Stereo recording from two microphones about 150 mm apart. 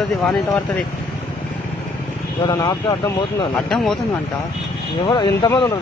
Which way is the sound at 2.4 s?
25° left (ahead or behind).